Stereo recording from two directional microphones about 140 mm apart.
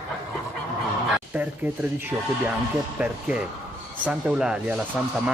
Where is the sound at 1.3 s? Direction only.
15° right (ahead or behind).